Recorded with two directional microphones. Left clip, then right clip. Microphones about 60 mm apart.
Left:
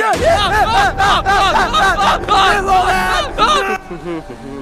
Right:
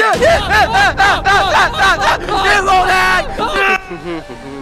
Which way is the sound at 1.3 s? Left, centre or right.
Right.